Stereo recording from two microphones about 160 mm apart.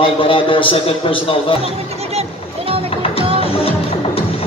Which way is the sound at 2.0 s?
40° right (ahead or behind).